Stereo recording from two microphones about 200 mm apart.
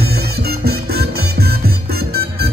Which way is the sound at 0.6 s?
50° right (ahead or behind).